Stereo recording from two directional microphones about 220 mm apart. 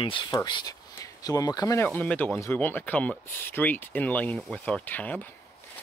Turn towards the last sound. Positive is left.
turn(degrees=5)  # may be behind; listen again after turning